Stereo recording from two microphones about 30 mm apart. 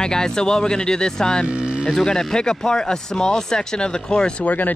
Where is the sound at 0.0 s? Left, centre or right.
Left.